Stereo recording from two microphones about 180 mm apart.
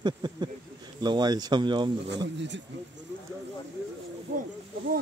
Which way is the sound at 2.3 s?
80° right.